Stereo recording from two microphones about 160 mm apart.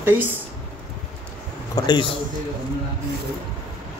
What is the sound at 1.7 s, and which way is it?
Speech, 25° left (ahead or behind).